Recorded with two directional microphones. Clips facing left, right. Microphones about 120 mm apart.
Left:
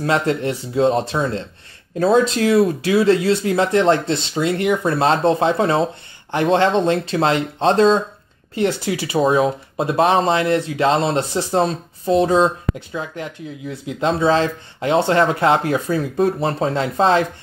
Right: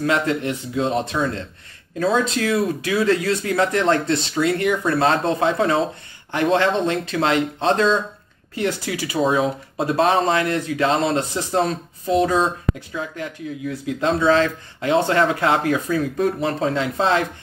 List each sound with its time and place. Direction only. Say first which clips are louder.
0.0 s speech: left 2 dB; 35° left (ahead or behind)
8.5 s speech: left 4 dB; 25° left (ahead or behind)
14.2 s speech: even; 35° left (ahead or behind)